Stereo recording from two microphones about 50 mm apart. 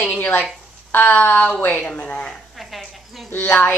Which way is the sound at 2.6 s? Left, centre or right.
Centre.